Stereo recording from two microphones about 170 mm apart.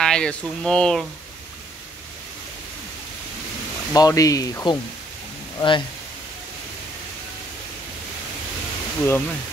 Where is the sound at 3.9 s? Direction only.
20° left (ahead or behind).